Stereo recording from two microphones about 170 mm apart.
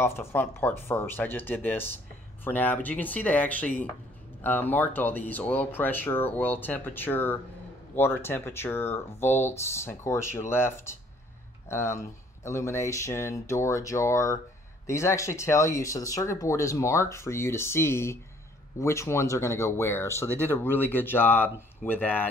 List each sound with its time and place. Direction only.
0.0 s speech: 15° left (ahead or behind)